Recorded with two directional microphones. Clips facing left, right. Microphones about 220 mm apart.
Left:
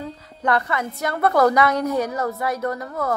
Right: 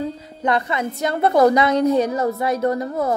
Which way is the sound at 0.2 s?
20° right (ahead or behind).